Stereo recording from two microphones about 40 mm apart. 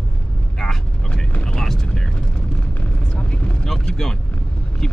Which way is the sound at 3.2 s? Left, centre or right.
Left.